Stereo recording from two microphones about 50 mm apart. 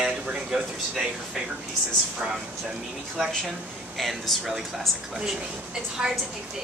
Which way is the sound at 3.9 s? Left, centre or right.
Centre.